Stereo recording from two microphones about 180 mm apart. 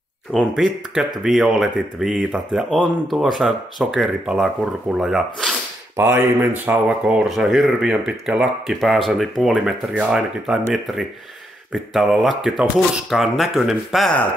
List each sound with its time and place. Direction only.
0.3 s speech: centre (ahead or behind)